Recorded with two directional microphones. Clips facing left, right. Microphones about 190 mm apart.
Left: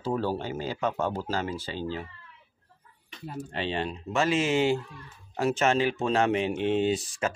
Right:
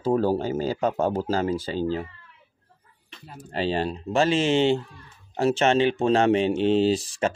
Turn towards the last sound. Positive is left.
turn(degrees=-30)  # may be behind; listen again after turning